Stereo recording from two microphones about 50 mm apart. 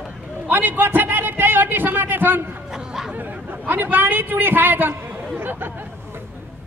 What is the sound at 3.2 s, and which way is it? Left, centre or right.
A man's voice, right.